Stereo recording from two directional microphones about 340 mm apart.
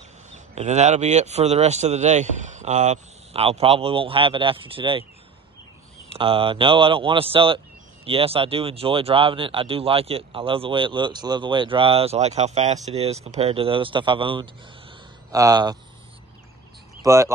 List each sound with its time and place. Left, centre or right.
0.3 s a man's voice: centre
6.0 s speech: centre
17.0 s a sound: centre